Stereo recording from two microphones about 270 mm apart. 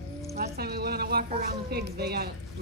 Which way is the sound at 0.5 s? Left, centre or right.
Right.